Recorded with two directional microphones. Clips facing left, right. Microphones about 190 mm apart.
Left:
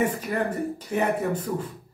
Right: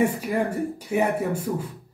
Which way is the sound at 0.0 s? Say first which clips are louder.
Right 2 dB; 10° right (ahead or behind).